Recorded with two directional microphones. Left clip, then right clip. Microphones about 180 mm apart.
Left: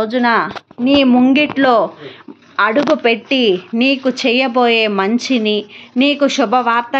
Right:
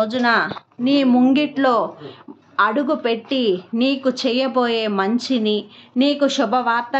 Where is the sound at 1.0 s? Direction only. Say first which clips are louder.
Left 3 dB; 10° left (ahead or behind).